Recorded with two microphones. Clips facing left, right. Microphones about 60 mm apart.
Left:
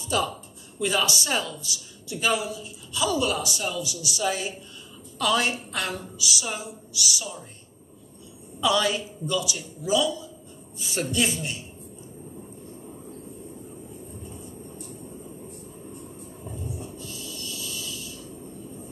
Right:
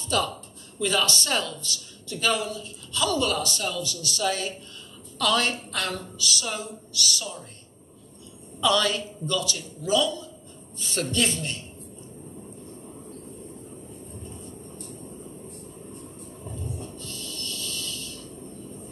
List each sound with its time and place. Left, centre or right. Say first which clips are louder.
0.1 s speech: even; centre
8.5 s speech: even; centre
14.2 s vehicle: left 1 dB; centre
16.0 s a sound: left 1 dB; centre